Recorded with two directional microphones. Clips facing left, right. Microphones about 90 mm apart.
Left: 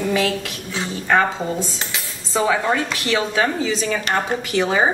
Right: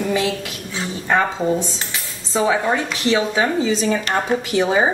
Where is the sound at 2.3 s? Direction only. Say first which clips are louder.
Right 1 dB; 20° right (ahead or behind).